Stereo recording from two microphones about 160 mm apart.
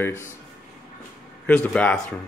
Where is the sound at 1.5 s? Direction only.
10° left (ahead or behind).